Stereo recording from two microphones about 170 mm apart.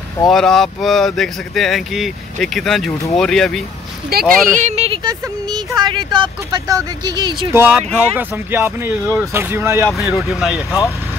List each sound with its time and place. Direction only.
0.3 s speech: centre (ahead or behind)
4.1 s speech: 65° right (ahead or behind)
4.6 s a sound: 35° right (ahead or behind)
5.0 s speech: 25° right (ahead or behind)
7.5 s speech: 10° right (ahead or behind)
10.1 s speech: centre (ahead or behind)